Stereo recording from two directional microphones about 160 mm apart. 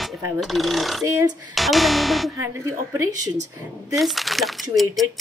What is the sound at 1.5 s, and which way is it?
Speech, centre (ahead or behind).